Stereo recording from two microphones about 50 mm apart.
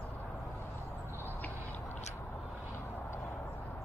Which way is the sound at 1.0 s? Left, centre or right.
Right.